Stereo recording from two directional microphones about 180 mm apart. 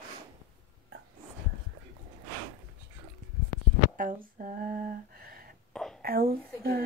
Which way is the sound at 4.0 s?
50° right (ahead or behind).